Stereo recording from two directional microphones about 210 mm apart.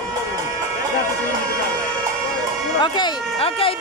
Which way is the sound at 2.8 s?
25° left (ahead or behind).